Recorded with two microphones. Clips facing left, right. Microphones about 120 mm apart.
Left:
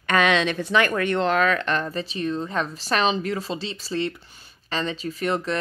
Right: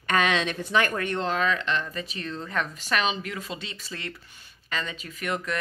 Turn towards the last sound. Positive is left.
turn(degrees=30)  # may be behind; listen again after turning